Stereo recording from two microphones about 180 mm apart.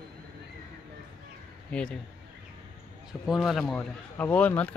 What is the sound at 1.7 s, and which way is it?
Speech, 5° left (ahead or behind).